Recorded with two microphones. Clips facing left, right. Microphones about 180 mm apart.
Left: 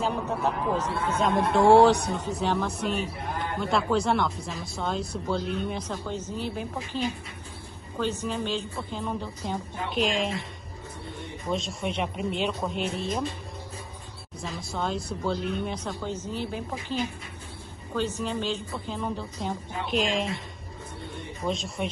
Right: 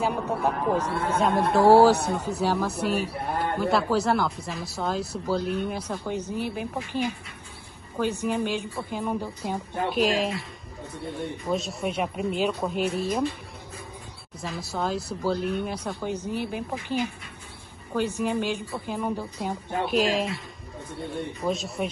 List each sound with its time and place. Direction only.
0.0 s a woman's voice: 10° right (ahead or behind)
0.9 s speech: 60° right (ahead or behind)
1.2 s a woman's voice: 5° right (ahead or behind)
11.5 s speech: 5° right (ahead or behind)
14.4 s a woman's voice: 5° right (ahead or behind)
21.4 s speech: 5° right (ahead or behind)